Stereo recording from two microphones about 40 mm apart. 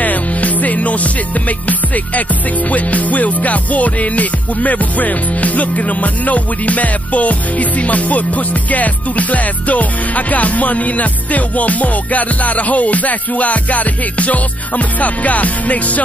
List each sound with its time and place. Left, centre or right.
0.0 s music: left